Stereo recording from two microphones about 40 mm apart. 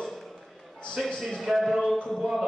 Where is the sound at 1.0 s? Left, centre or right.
Centre.